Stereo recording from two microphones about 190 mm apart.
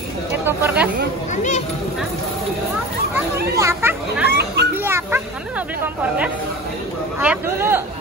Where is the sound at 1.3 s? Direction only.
40° left (ahead or behind).